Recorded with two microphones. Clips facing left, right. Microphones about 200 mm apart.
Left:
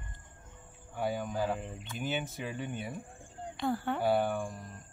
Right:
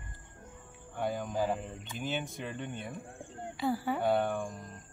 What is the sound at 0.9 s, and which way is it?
Speech, 5° left (ahead or behind).